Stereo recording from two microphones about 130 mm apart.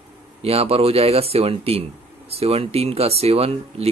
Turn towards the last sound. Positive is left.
turn(degrees=-50)  # may be behind; listen again after turning